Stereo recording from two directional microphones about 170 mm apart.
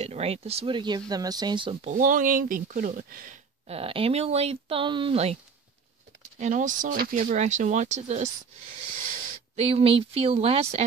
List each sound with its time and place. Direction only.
0.0 s speech: 40° right (ahead or behind)
1.9 s speech: 50° right (ahead or behind)
3.6 s speech: 35° right (ahead or behind)
6.3 s speech: 45° right (ahead or behind)
9.6 s speech: 35° right (ahead or behind)